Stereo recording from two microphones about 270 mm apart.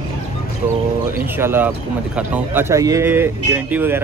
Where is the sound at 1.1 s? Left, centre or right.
Centre.